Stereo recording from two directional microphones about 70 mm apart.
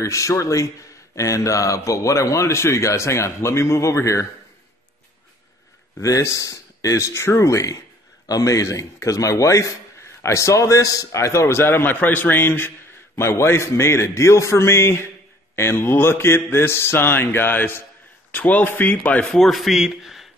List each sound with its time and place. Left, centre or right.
0.0 s speech: left
5.9 s a man's voice: left
19.2 s a man's voice: centre